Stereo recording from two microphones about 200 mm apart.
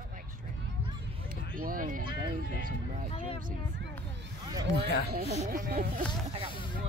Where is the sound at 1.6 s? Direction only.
45° right (ahead or behind).